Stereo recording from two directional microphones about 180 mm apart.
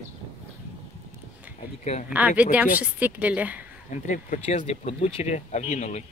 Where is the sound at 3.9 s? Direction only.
45° left (ahead or behind).